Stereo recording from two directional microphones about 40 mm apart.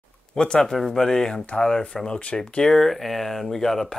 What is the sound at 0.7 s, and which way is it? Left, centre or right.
Speech, centre.